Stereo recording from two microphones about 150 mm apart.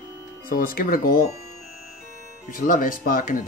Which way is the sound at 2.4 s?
65° left (ahead or behind).